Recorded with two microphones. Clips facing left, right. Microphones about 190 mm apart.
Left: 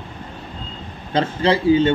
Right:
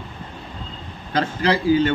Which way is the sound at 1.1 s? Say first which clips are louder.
Left 2 dB; 25° left (ahead or behind).